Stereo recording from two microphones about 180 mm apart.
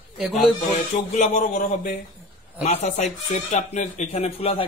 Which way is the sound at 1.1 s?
45° left (ahead or behind).